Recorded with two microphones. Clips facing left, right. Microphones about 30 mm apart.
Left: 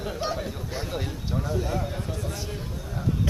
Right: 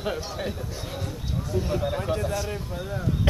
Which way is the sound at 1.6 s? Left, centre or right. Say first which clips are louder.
Right 3 dB; right.